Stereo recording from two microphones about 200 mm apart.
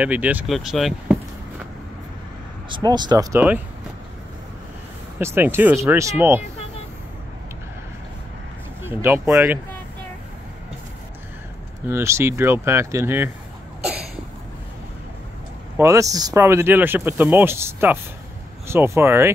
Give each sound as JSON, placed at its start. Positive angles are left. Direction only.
{"t": 0.0, "sound": "speech", "side_deg": -10}
{"t": 2.7, "sound": "speech", "side_deg": -20}
{"t": 5.2, "sound": "speech", "side_deg": -10}
{"t": 8.8, "sound": "speech", "side_deg": -10}
{"t": 11.9, "sound": "speech", "side_deg": -15}
{"t": 15.8, "sound": "speech", "side_deg": -15}